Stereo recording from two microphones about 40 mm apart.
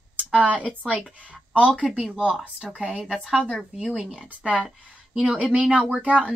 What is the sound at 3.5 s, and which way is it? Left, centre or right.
Speech, centre.